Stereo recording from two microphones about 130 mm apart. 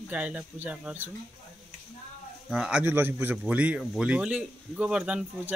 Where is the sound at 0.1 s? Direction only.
10° right (ahead or behind).